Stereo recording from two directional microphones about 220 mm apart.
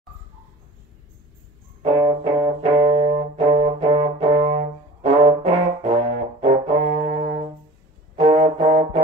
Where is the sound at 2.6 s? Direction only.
25° right (ahead or behind).